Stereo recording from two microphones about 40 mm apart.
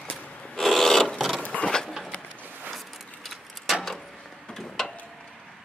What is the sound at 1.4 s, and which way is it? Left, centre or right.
Mechanisms, left.